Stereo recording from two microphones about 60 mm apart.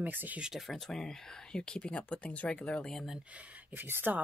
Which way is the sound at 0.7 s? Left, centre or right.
Centre.